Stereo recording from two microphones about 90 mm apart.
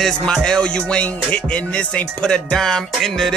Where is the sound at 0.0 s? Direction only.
10° left (ahead or behind).